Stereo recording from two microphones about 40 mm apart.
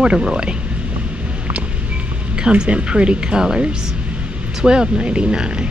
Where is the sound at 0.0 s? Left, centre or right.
Centre.